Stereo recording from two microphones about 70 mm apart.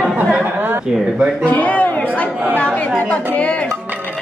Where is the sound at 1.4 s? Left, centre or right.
Left.